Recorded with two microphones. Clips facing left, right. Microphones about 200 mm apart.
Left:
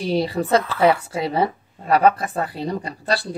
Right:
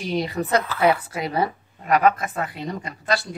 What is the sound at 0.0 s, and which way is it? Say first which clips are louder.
A woman's voice: left 4 dB; 30° left (ahead or behind).